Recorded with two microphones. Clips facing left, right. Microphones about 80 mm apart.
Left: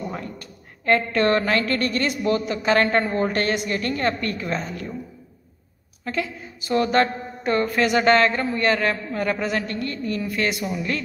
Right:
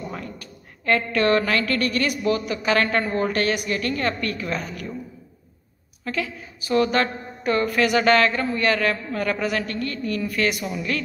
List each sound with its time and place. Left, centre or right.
0.1 s a woman's voice: left
6.0 s a woman's voice: left